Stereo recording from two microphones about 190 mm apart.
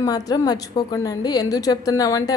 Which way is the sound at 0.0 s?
20° left (ahead or behind).